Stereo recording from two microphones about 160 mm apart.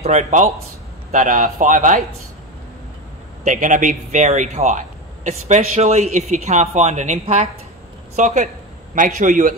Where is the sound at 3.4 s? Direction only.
55° right (ahead or behind).